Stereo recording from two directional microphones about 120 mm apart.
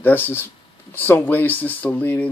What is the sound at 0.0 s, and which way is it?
Speech, 15° left (ahead or behind).